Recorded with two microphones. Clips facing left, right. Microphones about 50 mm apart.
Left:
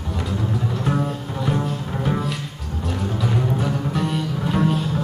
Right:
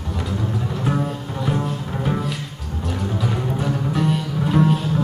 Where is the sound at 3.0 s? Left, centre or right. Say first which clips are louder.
Left 1 dB; centre.